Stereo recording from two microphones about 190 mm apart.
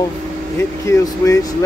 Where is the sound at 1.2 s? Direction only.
15° left (ahead or behind).